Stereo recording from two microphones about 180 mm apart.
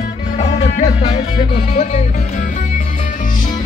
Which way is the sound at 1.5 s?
35° left (ahead or behind).